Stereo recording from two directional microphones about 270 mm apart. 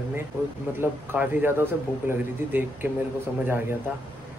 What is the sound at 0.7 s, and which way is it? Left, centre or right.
Speech, centre.